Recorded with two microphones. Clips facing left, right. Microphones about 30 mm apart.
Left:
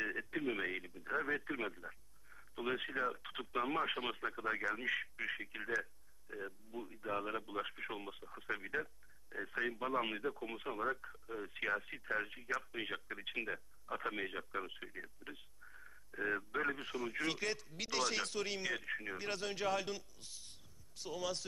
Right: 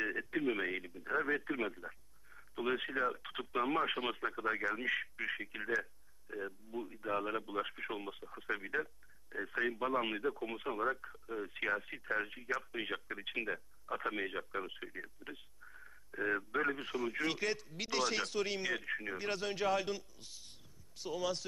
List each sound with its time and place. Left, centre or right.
0.0 s speech: centre